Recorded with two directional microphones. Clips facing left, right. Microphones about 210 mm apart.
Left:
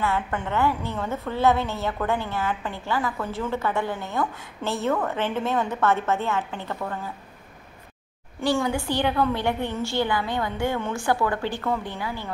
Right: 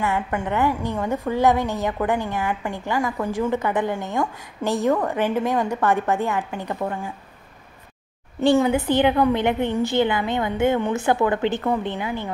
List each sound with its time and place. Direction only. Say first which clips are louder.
0.0 s a woman's voice: right 2 dB; 15° right (ahead or behind)
8.4 s a woman's voice: right 6 dB; 20° right (ahead or behind)